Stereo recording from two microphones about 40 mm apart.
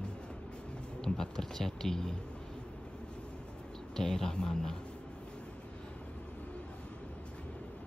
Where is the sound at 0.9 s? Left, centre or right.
Centre.